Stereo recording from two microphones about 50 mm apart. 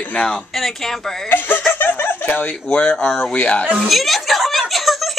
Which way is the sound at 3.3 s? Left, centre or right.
Left.